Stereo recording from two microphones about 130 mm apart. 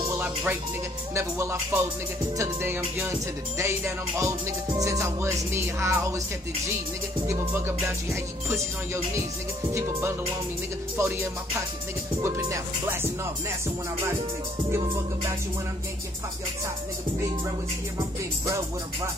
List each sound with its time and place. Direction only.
0.1 s speech: 15° right (ahead or behind)
1.1 s music: 20° right (ahead or behind)
7.2 s music: 20° right (ahead or behind)
9.7 s music: 20° right (ahead or behind)
17.9 s music: 25° right (ahead or behind)